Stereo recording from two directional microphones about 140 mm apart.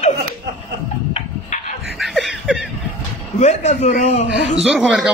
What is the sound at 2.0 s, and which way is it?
Snicker, centre (ahead or behind).